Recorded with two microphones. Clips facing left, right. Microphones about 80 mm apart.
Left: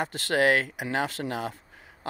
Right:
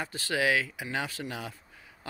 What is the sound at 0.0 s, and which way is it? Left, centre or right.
Speech, left.